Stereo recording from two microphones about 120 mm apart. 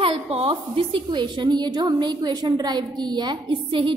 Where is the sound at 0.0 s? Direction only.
50° right (ahead or behind).